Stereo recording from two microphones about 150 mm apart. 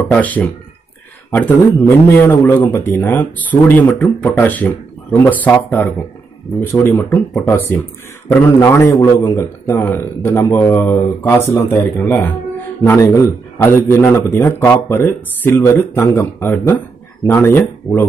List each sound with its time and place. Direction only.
0.1 s a man's voice: 10° left (ahead or behind)